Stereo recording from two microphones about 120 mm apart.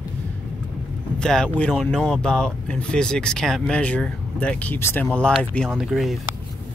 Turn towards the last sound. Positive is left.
turn(degrees=0)  # may be behind; listen again after turning